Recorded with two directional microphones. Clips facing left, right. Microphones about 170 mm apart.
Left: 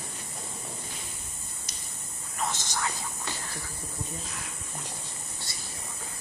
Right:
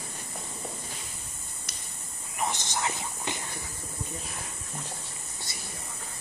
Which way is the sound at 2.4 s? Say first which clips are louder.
Right 1 dB; 15° right (ahead or behind).